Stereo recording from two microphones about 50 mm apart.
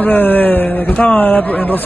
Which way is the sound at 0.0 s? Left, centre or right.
Left.